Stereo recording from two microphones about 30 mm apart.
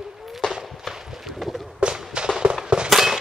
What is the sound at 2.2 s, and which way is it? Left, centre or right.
Fireworks, right.